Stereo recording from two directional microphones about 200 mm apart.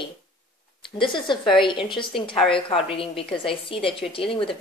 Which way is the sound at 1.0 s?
25° left (ahead or behind).